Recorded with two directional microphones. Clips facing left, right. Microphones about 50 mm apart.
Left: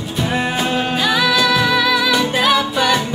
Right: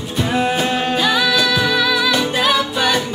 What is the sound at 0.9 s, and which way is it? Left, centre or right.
Music, centre.